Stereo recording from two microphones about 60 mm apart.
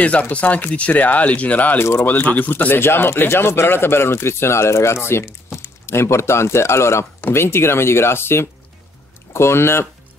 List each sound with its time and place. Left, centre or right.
0.0 s speech: left
1.8 s speech: left
2.0 s speech: left